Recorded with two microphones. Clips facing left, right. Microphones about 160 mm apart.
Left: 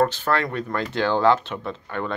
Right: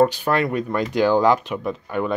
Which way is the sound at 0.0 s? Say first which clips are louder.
Right 3 dB; 15° right (ahead or behind).